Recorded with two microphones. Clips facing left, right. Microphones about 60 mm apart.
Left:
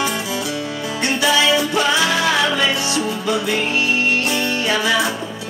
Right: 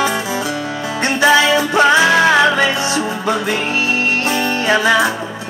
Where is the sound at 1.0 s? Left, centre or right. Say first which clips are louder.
Right 5 dB; right.